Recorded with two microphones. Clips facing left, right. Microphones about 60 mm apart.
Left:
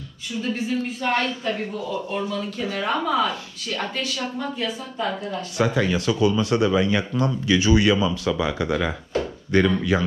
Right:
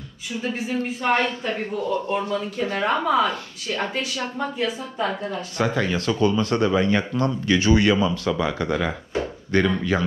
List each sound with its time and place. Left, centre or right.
0.3 s speech: centre
5.8 s speech: right